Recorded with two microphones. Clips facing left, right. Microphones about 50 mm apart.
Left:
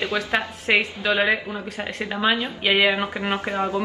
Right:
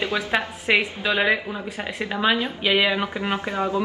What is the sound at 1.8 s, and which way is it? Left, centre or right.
A woman's voice, left.